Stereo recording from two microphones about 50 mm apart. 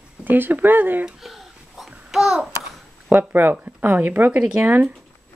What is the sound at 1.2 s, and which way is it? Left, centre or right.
Babbling, centre.